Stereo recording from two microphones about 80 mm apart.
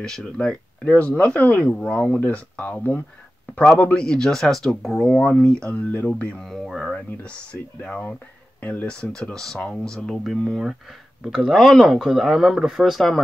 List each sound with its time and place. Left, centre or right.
0.0 s speech: centre
3.8 s speech: centre
6.4 s speech: centre
7.8 s speech: centre
8.9 s speech: centre